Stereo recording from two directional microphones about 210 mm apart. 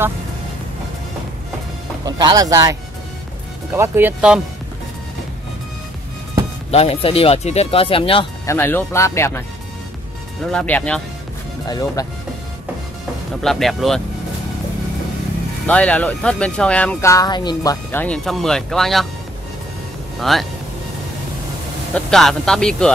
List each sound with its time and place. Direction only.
2.0 s speech: 20° right (ahead or behind)
6.7 s speech: 30° left (ahead or behind)
8.5 s speech: 10° left (ahead or behind)
10.4 s speech: 5° left (ahead or behind)
11.6 s speech: 15° left (ahead or behind)
13.4 s speech: centre (ahead or behind)
15.6 s speech: 5° left (ahead or behind)
17.9 s speech: 5° left (ahead or behind)
20.2 s speech: centre (ahead or behind)
21.9 s speech: centre (ahead or behind)